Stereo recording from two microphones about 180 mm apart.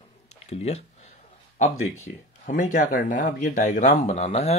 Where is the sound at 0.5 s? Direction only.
35° left (ahead or behind).